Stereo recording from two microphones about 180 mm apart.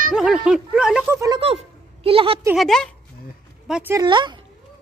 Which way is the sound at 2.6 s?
5° left (ahead or behind).